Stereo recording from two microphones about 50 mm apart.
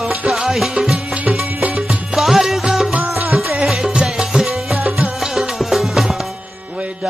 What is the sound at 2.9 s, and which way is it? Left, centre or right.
Music, right.